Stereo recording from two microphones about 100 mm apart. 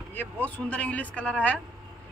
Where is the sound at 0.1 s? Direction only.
15° left (ahead or behind).